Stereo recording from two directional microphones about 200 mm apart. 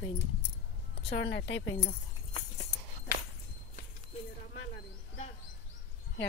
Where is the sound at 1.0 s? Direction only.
60° left (ahead or behind).